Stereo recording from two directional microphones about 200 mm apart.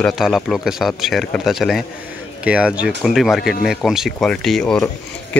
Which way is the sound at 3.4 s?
50° left (ahead or behind).